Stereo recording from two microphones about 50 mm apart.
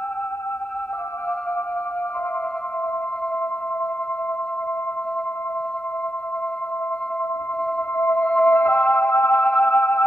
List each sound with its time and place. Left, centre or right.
8.2 s music: left
9.4 s music: left